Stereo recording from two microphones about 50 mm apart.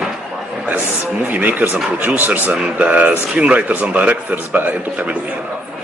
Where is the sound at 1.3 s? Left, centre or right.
Right.